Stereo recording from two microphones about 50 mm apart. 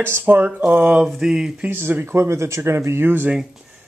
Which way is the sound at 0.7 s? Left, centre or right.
Right.